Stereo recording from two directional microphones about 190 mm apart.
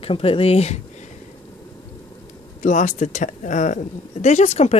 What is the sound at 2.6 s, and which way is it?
Speech, 40° left (ahead or behind).